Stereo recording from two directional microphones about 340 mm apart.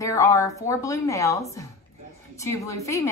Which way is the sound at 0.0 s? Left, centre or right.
Centre.